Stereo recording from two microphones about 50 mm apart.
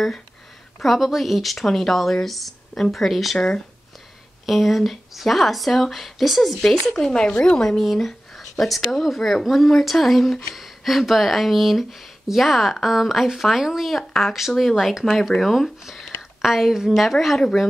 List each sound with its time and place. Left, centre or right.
0.7 s speech: centre
3.3 s speech: left
4.5 s speech: centre
6.6 s speech: centre
7.8 s speech: centre